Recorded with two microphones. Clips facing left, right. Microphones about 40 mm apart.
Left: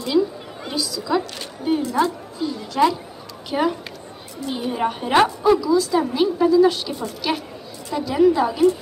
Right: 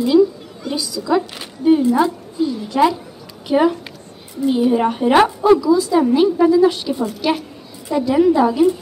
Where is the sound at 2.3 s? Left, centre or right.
Centre.